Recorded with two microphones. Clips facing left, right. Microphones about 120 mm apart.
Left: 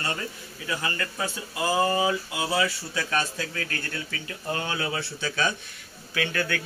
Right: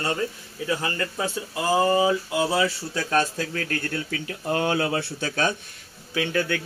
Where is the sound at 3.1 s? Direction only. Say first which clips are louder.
Right 7 dB; 40° right (ahead or behind).